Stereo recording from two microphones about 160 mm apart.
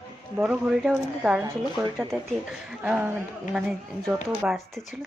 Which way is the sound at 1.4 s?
20° right (ahead or behind).